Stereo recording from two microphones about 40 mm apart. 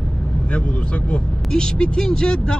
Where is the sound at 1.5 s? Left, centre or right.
Left.